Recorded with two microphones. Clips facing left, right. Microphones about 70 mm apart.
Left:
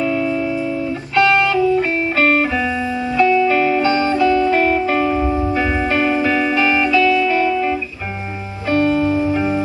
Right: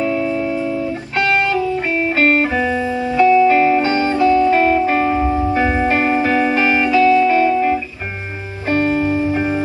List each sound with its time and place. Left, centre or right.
0.0 s music: right